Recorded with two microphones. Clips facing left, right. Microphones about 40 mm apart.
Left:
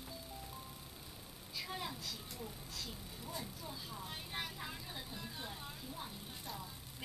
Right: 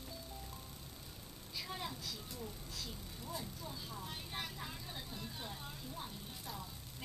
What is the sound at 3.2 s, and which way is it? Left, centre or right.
Speech, centre.